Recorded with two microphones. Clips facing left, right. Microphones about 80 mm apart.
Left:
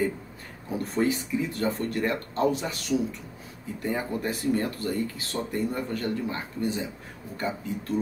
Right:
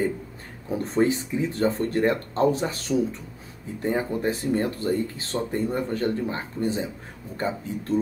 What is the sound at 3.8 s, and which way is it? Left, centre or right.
Speech, right.